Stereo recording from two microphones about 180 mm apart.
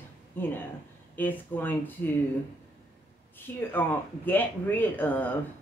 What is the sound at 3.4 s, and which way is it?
Speech, 10° left (ahead or behind).